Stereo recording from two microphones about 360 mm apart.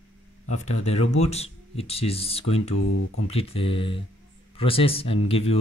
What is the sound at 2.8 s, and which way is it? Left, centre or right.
Music, left.